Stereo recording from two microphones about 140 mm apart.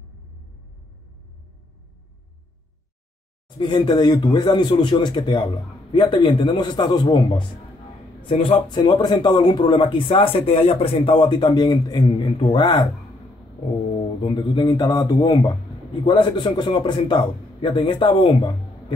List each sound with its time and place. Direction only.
3.4 s speech: 30° left (ahead or behind)
8.3 s speech: 40° left (ahead or behind)
13.9 s a man's voice: 35° left (ahead or behind)